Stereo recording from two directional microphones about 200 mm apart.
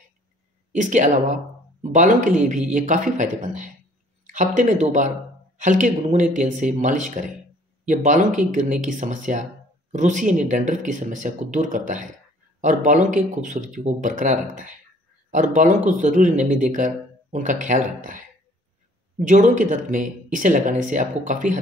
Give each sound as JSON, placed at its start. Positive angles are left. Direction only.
{"t": 0.7, "sound": "speech", "side_deg": -40}